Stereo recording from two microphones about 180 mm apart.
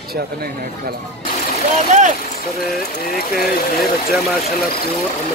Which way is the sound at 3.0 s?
55° left (ahead or behind).